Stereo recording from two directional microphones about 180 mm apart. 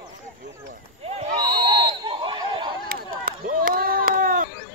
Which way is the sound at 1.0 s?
35° right (ahead or behind).